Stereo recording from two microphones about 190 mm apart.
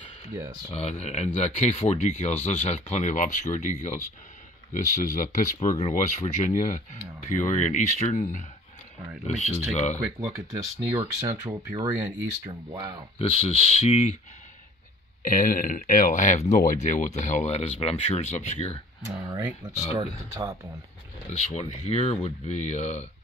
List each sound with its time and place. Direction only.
0.7 s speech: 30° left (ahead or behind)
4.7 s speech: 45° left (ahead or behind)
9.9 s speech: 5° right (ahead or behind)
13.2 s speech: 35° left (ahead or behind)
15.2 s speech: 45° left (ahead or behind)
19.0 s speech: 15° right (ahead or behind)
21.5 s speech: 35° left (ahead or behind)